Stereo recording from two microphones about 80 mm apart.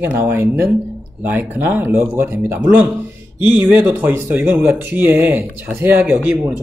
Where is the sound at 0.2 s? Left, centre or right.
Right.